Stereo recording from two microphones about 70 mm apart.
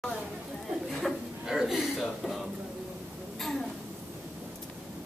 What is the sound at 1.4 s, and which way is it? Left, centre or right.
Speech, centre.